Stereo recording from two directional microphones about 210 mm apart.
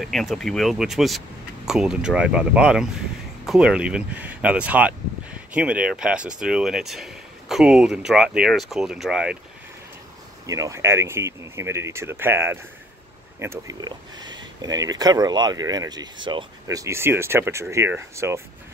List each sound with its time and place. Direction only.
0.0 s speech: centre (ahead or behind)
10.4 s speech: 15° right (ahead or behind)